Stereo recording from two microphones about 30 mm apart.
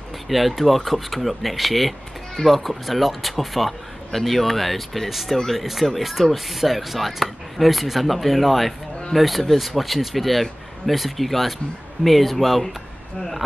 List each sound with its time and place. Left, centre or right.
0.3 s speech: centre